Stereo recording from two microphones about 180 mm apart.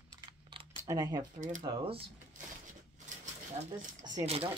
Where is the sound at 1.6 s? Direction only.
25° right (ahead or behind).